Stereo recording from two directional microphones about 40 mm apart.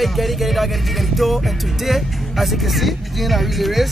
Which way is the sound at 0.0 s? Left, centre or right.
Centre.